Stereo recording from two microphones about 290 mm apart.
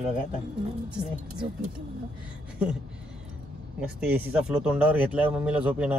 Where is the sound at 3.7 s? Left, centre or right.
Centre.